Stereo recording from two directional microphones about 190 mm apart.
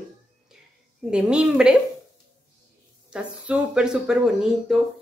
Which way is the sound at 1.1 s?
5° right (ahead or behind).